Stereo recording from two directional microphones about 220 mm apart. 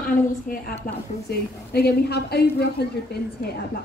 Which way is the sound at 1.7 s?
45° left (ahead or behind).